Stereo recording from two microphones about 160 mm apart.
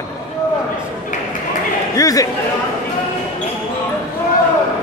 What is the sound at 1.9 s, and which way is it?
Speech, 20° left (ahead or behind).